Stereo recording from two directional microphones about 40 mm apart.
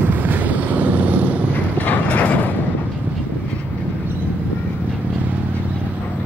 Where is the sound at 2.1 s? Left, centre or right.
Left.